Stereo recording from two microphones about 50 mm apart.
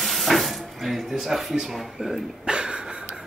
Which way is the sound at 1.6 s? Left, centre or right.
Centre.